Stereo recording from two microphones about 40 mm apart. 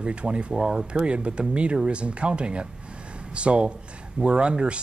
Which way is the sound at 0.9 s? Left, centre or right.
Right.